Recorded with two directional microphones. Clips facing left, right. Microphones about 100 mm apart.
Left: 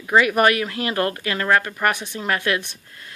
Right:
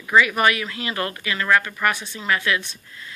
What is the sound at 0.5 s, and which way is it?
Speech, 50° left (ahead or behind).